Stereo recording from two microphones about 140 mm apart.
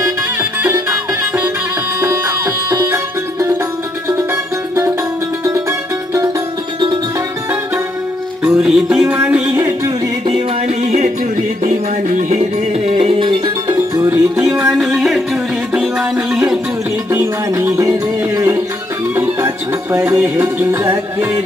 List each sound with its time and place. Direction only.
0.4 s music: 15° right (ahead or behind)
2.0 s music: 20° right (ahead or behind)
5.4 s music: 20° right (ahead or behind)
8.5 s music: 5° right (ahead or behind)
10.8 s a sound: 55° right (ahead or behind)
11.6 s music: 65° right (ahead or behind); by 13.7 s 40° right (ahead or behind)
13.7 s music: 20° right (ahead or behind)
14.4 s music: 5° right (ahead or behind)
17.1 s music: 20° right (ahead or behind)